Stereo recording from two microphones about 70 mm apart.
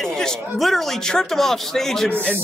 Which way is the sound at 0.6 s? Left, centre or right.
Centre.